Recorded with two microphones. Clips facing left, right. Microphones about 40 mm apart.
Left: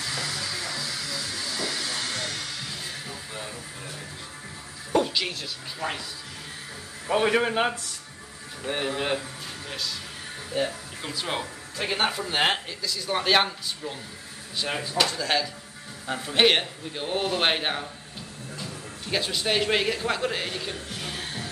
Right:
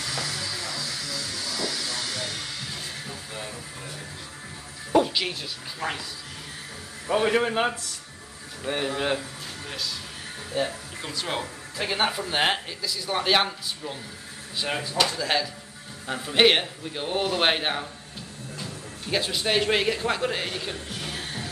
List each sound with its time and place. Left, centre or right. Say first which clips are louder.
0.4 s a sound: even; left
1.5 s hiss: even; left
4.9 s music: right 2 dB; centre
5.8 s a man's voice: right 1 dB; centre
7.1 s a man's voice: even; centre
10.5 s a man's voice: even; centre